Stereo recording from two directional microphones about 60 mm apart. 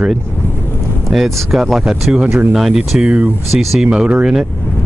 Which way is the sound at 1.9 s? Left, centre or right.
Centre.